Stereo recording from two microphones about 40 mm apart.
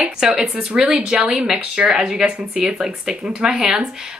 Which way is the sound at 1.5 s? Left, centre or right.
Right.